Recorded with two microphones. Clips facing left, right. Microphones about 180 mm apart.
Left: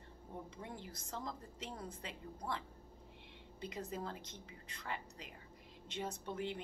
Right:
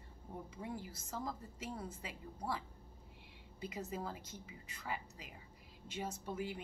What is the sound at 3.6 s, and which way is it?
A woman's voice, 5° right (ahead or behind).